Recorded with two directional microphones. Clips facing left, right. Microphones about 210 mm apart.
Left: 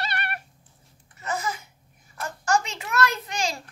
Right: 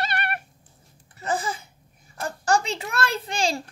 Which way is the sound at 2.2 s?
35° right (ahead or behind).